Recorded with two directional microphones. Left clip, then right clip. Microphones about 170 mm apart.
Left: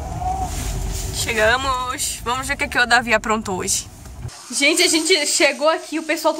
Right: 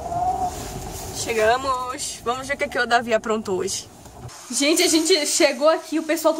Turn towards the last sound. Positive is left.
turn(degrees=0)  # may be behind; listen again after turning